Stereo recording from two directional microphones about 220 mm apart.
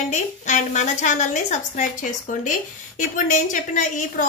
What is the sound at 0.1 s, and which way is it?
A woman's voice, 30° left (ahead or behind).